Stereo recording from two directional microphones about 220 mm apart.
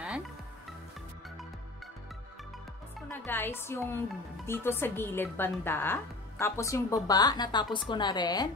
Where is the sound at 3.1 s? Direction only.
10° left (ahead or behind).